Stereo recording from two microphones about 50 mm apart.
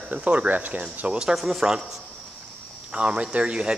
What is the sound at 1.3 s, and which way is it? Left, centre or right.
Speech, centre.